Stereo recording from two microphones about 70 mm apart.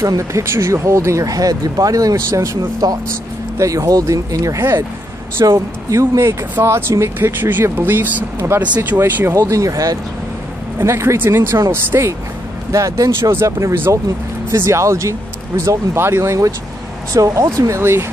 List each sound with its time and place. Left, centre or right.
0.0 s speech: right
5.4 s speech: right
5.9 s speech: right
9.3 s speech: right
10.8 s speech: right
12.7 s speech: right
13.2 s speech: right